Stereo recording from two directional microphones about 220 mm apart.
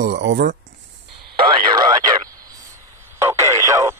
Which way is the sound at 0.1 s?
55° right (ahead or behind).